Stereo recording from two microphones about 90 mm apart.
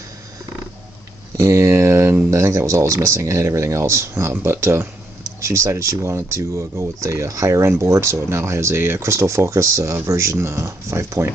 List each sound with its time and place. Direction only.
1.3 s speech: 35° right (ahead or behind)